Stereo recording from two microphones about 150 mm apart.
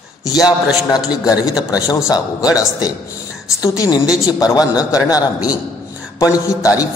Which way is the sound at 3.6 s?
20° left (ahead or behind).